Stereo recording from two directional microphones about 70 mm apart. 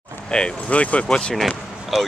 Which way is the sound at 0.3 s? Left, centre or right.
Centre.